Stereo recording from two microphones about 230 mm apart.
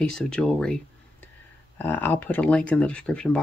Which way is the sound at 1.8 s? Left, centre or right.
Centre.